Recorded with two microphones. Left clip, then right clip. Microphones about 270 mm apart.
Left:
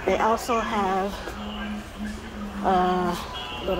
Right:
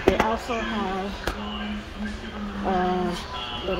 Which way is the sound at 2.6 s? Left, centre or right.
Centre.